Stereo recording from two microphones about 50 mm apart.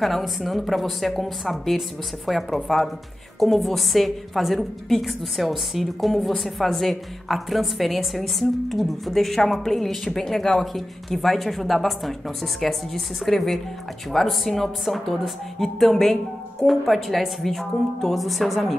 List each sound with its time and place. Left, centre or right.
0.0 s a woman's voice: centre